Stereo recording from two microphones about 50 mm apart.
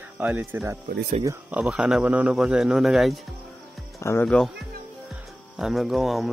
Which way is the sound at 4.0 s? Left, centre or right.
Left.